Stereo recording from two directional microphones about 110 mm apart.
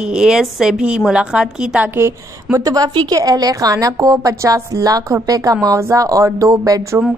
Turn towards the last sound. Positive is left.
turn(degrees=-30)  # may be behind; listen again after turning